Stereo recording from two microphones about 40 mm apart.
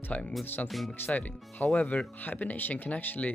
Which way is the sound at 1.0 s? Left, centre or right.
Left.